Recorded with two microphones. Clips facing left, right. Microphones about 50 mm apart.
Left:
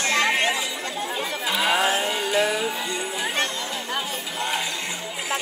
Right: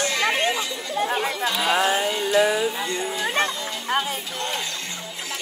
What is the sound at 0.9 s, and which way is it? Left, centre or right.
Chatter, right.